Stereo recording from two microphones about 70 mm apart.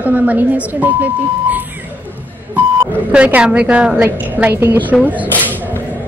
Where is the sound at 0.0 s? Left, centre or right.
Right.